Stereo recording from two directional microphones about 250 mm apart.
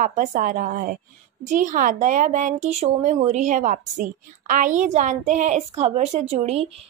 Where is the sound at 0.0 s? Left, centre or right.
Right.